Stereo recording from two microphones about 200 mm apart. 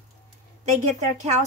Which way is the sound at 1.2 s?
35° right (ahead or behind).